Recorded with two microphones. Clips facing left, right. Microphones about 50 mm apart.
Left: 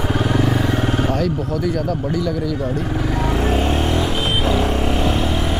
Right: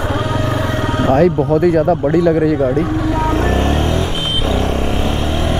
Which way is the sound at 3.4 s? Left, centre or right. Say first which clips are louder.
Right 3 dB; right.